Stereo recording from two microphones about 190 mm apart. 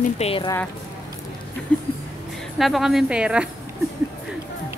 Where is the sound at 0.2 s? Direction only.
30° left (ahead or behind).